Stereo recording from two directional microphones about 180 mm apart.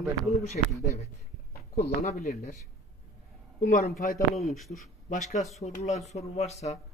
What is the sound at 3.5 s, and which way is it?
Speech, 45° left (ahead or behind).